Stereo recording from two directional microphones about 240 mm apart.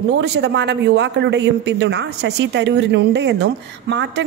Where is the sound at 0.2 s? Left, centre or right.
Right.